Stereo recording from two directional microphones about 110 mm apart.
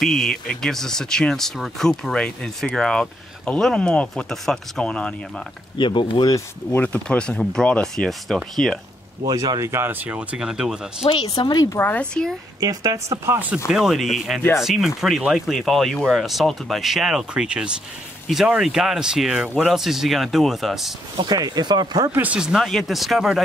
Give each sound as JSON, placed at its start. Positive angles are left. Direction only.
{"t": 0.0, "sound": "speech", "side_deg": 5}
{"t": 5.8, "sound": "speech", "side_deg": 45}
{"t": 6.3, "sound": "speech", "side_deg": 15}
{"t": 9.2, "sound": "speech", "side_deg": -35}
{"t": 11.1, "sound": "speech", "side_deg": 40}
{"t": 11.8, "sound": "speech", "side_deg": 10}
{"t": 12.5, "sound": "speech", "side_deg": -30}
{"t": 13.7, "sound": "speech", "side_deg": -5}
{"t": 21.2, "sound": "speech", "side_deg": -40}
{"t": 22.1, "sound": "speech", "side_deg": -15}